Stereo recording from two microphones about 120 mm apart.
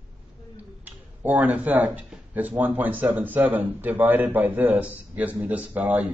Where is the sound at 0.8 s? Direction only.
15° right (ahead or behind).